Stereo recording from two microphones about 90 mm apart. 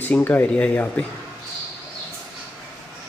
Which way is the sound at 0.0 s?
20° left (ahead or behind).